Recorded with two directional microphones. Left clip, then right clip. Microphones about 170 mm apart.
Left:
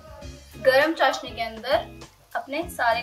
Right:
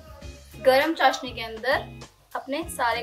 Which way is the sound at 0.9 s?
55° right (ahead or behind).